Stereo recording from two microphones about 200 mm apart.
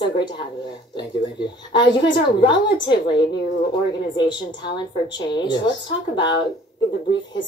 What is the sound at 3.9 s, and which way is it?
Speech, 20° left (ahead or behind).